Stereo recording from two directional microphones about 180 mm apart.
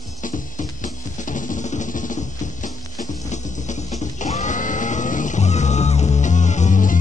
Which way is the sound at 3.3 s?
40° left (ahead or behind).